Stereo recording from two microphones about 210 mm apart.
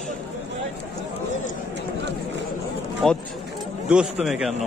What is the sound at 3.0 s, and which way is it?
Speech, centre (ahead or behind).